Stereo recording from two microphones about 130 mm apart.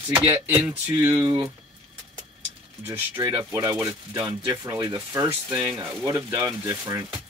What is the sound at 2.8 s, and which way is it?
Speech, 15° right (ahead or behind).